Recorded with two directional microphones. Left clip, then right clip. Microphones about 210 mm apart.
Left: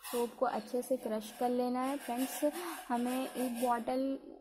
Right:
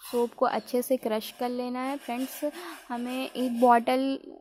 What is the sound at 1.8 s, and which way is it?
Speech, 15° right (ahead or behind).